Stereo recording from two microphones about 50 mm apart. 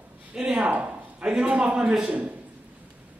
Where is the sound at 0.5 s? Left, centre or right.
Right.